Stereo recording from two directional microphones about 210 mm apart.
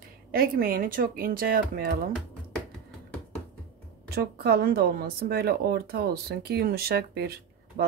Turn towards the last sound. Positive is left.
turn(degrees=-50)  # may be behind; listen again after turning